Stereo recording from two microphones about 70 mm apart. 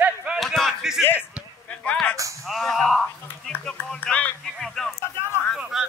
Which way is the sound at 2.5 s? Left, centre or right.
Centre.